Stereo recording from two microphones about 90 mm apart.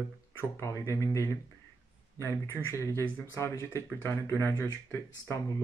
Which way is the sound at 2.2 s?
30° left (ahead or behind).